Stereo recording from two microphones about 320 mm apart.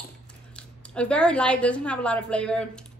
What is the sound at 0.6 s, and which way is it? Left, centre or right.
A woman's voice, centre.